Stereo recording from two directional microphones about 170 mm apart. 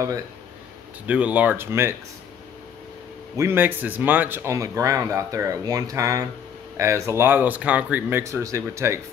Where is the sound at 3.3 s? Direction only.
15° right (ahead or behind).